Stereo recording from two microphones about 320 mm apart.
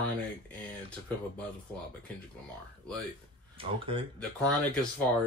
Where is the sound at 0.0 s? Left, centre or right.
Centre.